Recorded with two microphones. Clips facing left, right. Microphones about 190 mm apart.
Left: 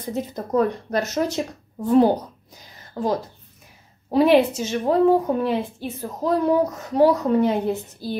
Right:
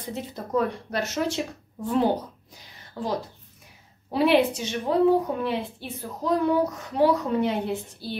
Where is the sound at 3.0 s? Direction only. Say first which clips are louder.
Left 5 dB; 45° left (ahead or behind).